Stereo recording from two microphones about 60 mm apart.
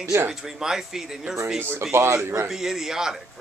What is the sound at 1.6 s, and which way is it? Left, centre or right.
Speech, right.